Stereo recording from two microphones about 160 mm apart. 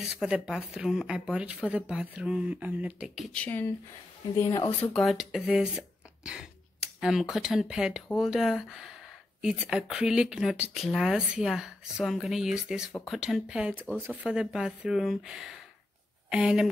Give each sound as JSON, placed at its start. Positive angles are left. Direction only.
{"t": 0.0, "sound": "speech", "side_deg": -5}
{"t": 3.3, "sound": "speech", "side_deg": 10}
{"t": 4.9, "sound": "speech", "side_deg": 0}